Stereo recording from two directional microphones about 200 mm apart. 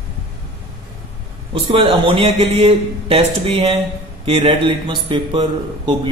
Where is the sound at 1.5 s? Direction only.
30° right (ahead or behind).